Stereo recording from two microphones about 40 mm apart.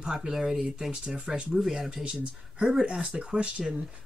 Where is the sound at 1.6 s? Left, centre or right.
Centre.